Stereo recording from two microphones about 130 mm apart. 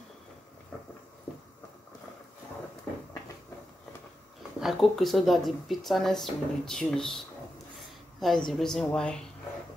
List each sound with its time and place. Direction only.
4.6 s speech: centre (ahead or behind)
8.2 s speech: centre (ahead or behind)